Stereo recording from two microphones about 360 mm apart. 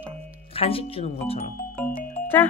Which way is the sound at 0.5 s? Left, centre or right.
Centre.